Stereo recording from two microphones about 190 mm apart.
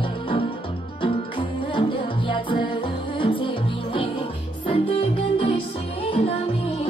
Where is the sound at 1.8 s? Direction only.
25° left (ahead or behind).